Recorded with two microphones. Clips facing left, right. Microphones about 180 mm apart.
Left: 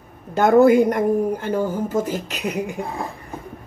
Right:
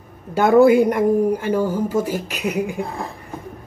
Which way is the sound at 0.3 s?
10° right (ahead or behind).